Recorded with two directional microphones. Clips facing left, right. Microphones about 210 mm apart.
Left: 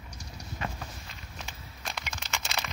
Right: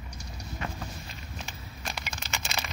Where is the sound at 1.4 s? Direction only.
10° right (ahead or behind).